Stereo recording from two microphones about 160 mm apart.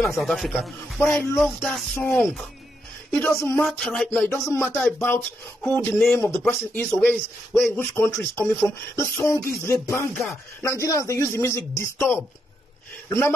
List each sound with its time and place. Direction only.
0.0 s a man's voice: centre (ahead or behind)
2.0 s speech: 15° left (ahead or behind)
3.5 s a man's voice: centre (ahead or behind)
4.3 s speech: 15° left (ahead or behind)